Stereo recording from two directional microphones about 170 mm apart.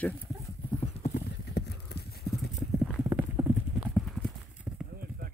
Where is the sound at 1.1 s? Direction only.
75° left (ahead or behind).